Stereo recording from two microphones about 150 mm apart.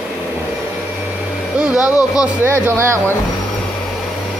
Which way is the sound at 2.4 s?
15° right (ahead or behind).